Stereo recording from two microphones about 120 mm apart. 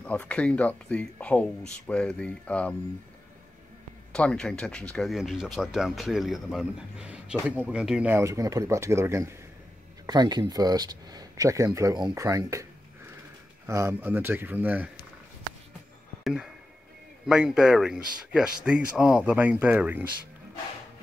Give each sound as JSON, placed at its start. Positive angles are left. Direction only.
{"t": 0.0, "sound": "speech", "side_deg": 10}
{"t": 4.1, "sound": "speech", "side_deg": 5}
{"t": 8.1, "sound": "speech", "side_deg": -25}
{"t": 10.0, "sound": "speech", "side_deg": -35}
{"t": 13.7, "sound": "speech", "side_deg": -25}
{"t": 16.3, "sound": "speech", "side_deg": -5}